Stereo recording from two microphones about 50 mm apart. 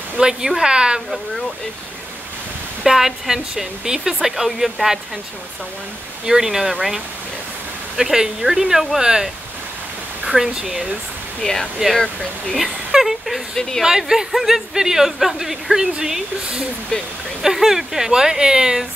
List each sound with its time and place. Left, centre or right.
0.2 s speech: centre
2.8 s speech: centre
6.2 s speech: centre
7.9 s speech: centre
11.4 s speech: centre
12.5 s speech: centre
13.6 s speech: centre
13.8 s speech: centre
17.4 s speech: centre